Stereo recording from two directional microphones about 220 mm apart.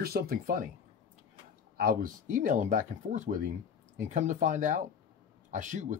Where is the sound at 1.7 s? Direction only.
40° right (ahead or behind).